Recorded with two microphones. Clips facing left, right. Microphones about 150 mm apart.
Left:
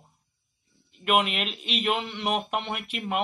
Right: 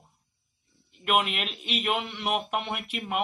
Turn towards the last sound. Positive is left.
turn(degrees=-10)  # may be behind; listen again after turning